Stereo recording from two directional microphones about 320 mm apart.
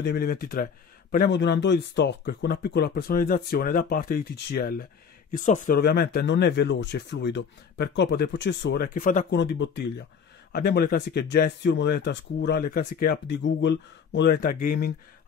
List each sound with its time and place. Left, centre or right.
0.0 s speech: left